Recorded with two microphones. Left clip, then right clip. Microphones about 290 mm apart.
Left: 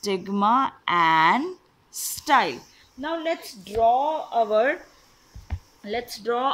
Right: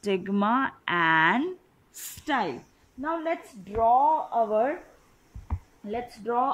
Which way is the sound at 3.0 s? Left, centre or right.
Left.